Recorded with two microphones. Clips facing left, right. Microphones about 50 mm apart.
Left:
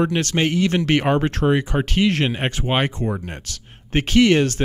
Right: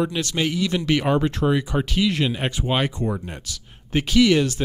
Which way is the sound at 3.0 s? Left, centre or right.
Left.